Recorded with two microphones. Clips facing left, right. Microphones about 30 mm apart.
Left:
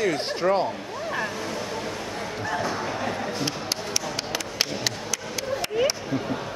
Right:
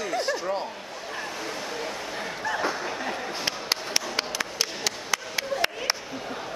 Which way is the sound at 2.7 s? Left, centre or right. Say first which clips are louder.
Left 2 dB; centre.